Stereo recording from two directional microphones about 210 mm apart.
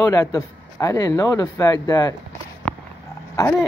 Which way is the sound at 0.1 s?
15° left (ahead or behind).